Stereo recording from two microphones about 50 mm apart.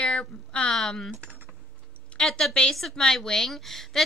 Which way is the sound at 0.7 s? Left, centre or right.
Centre.